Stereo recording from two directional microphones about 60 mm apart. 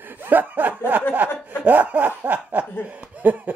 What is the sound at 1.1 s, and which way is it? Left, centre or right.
Chuckle, right.